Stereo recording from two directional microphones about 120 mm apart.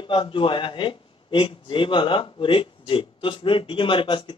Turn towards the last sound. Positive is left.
turn(degrees=45)  # may be behind; listen again after turning